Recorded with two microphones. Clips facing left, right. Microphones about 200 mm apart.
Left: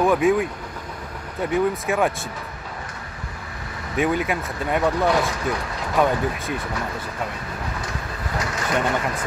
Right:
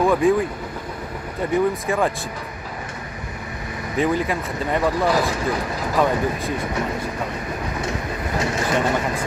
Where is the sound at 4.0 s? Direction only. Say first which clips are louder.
Right 1 dB; centre (ahead or behind).